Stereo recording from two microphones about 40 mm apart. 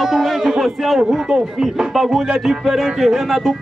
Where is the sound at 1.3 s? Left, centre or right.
Centre.